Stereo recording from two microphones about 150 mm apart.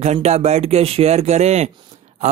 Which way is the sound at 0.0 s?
50° right (ahead or behind).